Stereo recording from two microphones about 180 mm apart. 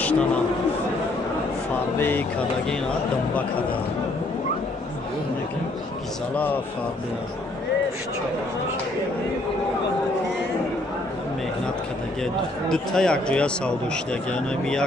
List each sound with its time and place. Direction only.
0.0 s a man's voice: 5° left (ahead or behind)
2.0 s speech: 10° left (ahead or behind)
12.6 s speech: 5° left (ahead or behind)